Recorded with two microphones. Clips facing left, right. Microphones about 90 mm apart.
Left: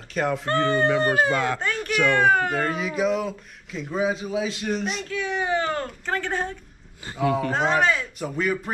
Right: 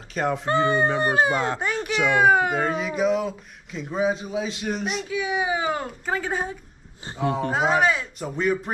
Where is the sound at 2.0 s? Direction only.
10° right (ahead or behind).